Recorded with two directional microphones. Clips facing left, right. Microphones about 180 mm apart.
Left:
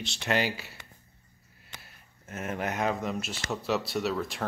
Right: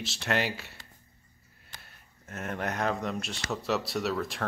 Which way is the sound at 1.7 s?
Centre (ahead or behind).